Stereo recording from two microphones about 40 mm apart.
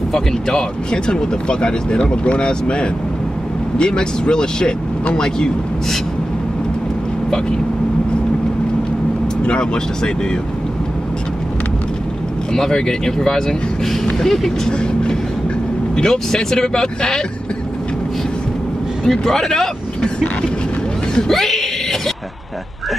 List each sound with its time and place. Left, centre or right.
0.1 s speech: centre
1.0 s speech: left
9.4 s speech: left
12.5 s speech: centre
16.0 s speech: centre
19.0 s speech: centre
21.3 s a sound: centre